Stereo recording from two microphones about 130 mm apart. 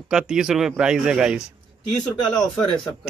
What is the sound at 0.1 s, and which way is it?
Speech, 5° right (ahead or behind).